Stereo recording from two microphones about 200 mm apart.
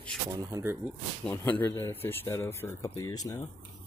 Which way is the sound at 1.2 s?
10° left (ahead or behind).